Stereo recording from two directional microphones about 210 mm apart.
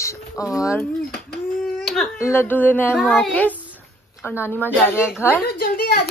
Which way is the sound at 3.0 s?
Centre (ahead or behind).